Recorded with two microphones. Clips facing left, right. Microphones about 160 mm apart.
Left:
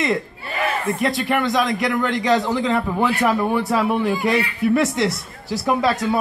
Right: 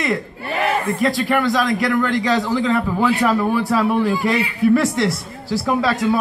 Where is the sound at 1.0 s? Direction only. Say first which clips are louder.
Right 3 dB; 20° left (ahead or behind).